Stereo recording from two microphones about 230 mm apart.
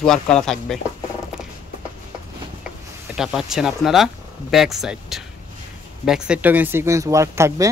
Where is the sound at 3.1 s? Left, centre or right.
Centre.